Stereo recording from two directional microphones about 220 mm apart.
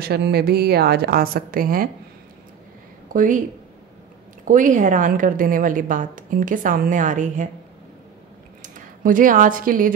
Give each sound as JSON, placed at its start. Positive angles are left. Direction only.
{"t": 0.0, "sound": "a woman's voice", "side_deg": -45}
{"t": 3.1, "sound": "speech", "side_deg": -35}
{"t": 4.5, "sound": "a woman's voice", "side_deg": -35}
{"t": 8.6, "sound": "speech", "side_deg": -35}